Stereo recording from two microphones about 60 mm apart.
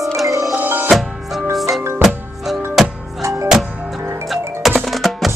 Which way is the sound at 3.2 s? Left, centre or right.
Right.